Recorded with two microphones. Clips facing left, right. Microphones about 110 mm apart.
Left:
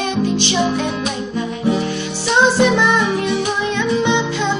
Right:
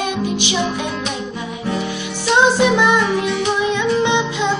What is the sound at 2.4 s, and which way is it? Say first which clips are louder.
Music: even; 15° right (ahead or behind).